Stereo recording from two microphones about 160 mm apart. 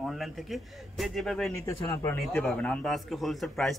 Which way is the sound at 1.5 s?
20° left (ahead or behind).